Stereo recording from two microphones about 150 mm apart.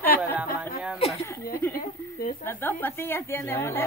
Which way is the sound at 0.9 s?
40° left (ahead or behind).